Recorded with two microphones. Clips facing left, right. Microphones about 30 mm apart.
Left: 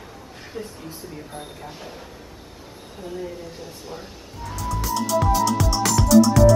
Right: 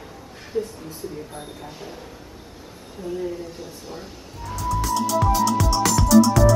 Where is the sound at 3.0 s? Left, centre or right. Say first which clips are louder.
Right 4 dB; left.